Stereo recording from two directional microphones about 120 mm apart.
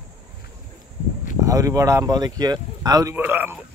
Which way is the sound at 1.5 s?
30° right (ahead or behind).